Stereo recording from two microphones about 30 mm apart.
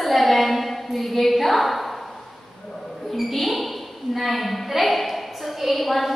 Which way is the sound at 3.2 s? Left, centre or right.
Centre.